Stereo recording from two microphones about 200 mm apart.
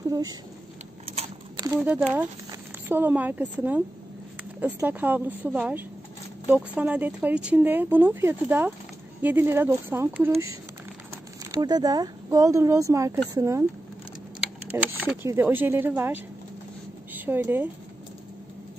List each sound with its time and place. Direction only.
0.1 s speech: 20° right (ahead or behind)
1.0 s a sound: 25° right (ahead or behind)
1.8 s speech: 10° right (ahead or behind)
11.5 s speech: 20° right (ahead or behind)
15.0 s speech: 10° right (ahead or behind)